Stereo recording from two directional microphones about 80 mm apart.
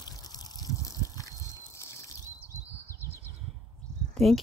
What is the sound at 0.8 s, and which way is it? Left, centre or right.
Liquid, left.